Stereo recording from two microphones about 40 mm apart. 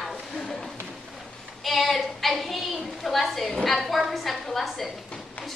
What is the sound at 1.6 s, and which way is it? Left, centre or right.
Child singing, centre.